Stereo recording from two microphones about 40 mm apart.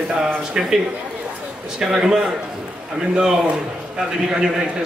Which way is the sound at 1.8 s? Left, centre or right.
Centre.